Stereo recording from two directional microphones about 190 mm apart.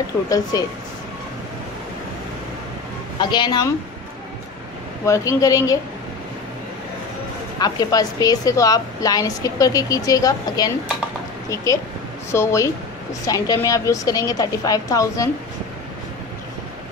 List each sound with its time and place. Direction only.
0.3 s a woman's voice: 20° left (ahead or behind)
3.2 s a woman's voice: 20° left (ahead or behind)
5.0 s a woman's voice: 15° left (ahead or behind)
7.5 s a woman's voice: 20° left (ahead or behind)